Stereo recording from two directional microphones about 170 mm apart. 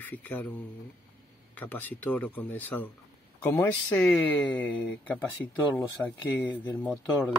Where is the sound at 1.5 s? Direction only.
10° left (ahead or behind).